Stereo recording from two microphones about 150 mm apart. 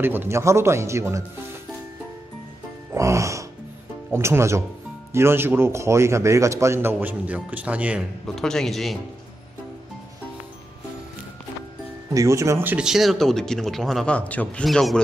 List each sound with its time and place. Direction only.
0.0 s a man's voice: 15° right (ahead or behind)
2.9 s music: 20° right (ahead or behind)
4.1 s a man's voice: 15° right (ahead or behind)
8.4 s speech: 5° left (ahead or behind)
12.1 s speech: 20° right (ahead or behind); by 15.0 s centre (ahead or behind)